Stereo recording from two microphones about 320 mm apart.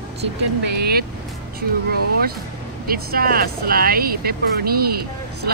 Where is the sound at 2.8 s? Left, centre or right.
Right.